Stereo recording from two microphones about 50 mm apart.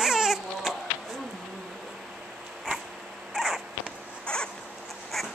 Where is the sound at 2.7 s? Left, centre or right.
Centre.